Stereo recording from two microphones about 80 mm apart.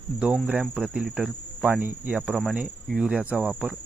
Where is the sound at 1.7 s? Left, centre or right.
Right.